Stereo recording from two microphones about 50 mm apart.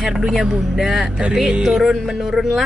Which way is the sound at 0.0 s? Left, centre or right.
Centre.